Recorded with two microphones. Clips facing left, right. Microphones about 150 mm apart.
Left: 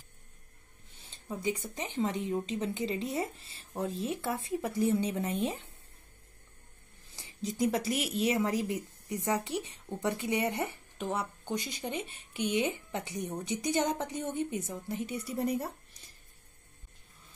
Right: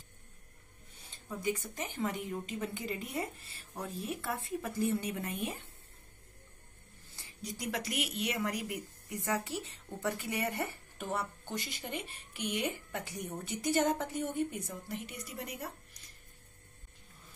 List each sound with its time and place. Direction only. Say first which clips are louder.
1.1 s a sound: left 2 dB; 25° left (ahead or behind)
1.8 s a woman's voice: left 4 dB; 20° left (ahead or behind)
7.2 s a sound: left 11 dB; 25° left (ahead or behind)
7.9 s a woman's voice: left 6 dB; 35° left (ahead or behind); by 11.9 s 15° left (ahead or behind)
12.1 s a woman's voice: left 6 dB; centre (ahead or behind)
12.6 s a woman's voice: left 3 dB; 20° left (ahead or behind)
15.2 s speech: left 10 dB; 35° left (ahead or behind)